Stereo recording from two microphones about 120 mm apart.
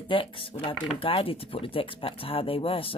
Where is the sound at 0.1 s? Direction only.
45° left (ahead or behind).